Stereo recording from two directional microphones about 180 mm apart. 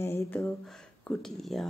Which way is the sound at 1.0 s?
Centre (ahead or behind).